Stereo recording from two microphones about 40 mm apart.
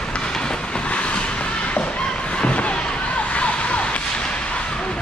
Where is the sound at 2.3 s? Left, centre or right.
Left.